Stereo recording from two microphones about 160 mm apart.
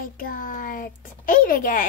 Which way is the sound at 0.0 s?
60° left (ahead or behind).